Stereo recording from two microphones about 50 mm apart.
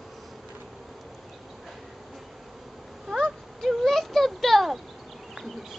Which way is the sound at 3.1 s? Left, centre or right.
Centre.